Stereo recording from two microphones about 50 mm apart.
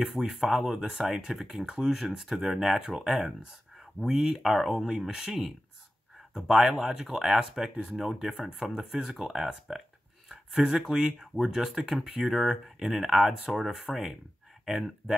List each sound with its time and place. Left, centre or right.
0.0 s speech: centre